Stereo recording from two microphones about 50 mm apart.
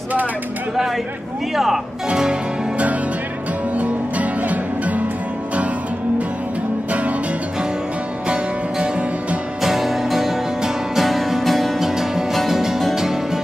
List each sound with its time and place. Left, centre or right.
1.5 s speech: centre
2.0 s music: centre
3.7 s music: right
6.9 s music: right
8.3 s music: centre
9.6 s music: centre
11.8 s music: centre